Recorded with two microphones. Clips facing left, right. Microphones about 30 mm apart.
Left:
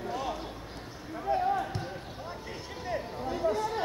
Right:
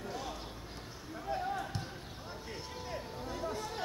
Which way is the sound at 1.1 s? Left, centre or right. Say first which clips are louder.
Left 8 dB; centre.